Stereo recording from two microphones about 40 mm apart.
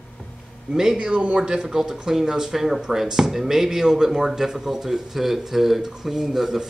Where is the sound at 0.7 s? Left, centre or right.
Right.